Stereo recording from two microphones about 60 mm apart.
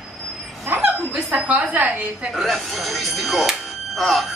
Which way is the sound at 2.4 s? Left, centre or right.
Centre.